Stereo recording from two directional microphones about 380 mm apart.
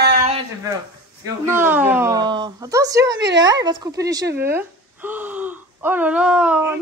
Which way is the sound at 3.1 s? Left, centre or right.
Right.